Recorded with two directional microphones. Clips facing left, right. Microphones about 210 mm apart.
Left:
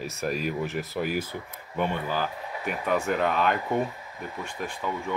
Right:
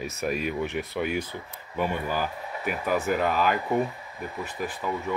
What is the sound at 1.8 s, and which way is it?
Speech, 10° right (ahead or behind).